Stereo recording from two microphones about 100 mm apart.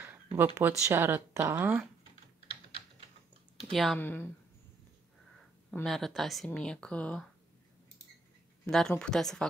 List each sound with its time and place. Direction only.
0.6 s speech: 25° right (ahead or behind)
3.7 s speech: centre (ahead or behind)
4.0 s a woman's voice: 20° left (ahead or behind)
5.9 s speech: centre (ahead or behind)
8.6 s speech: 5° left (ahead or behind)